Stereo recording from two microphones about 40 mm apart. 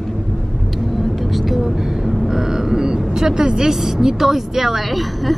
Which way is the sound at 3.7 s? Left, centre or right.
Centre.